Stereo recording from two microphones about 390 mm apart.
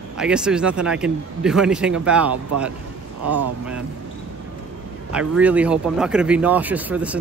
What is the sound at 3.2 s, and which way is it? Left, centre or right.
Speech, right.